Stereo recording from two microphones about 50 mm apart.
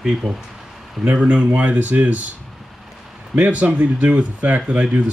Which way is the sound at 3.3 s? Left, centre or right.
Right.